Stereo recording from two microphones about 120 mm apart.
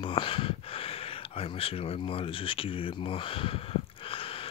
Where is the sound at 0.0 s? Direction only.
45° left (ahead or behind).